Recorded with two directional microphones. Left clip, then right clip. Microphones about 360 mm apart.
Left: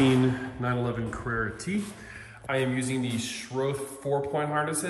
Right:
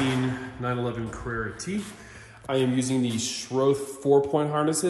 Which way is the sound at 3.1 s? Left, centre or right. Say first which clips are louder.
Right 4 dB; centre.